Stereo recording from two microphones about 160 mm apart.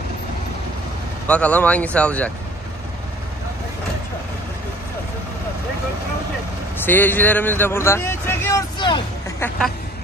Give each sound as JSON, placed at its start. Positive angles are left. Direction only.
{"t": 1.2, "sound": "speech", "side_deg": 10}
{"t": 6.8, "sound": "speech", "side_deg": 10}
{"t": 8.7, "sound": "speech", "side_deg": 30}